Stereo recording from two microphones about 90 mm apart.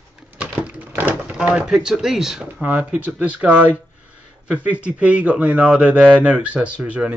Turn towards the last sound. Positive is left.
turn(degrees=-15)  # may be behind; listen again after turning